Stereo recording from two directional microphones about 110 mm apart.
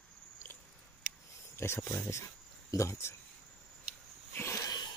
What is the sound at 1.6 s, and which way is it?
Speech, 20° left (ahead or behind).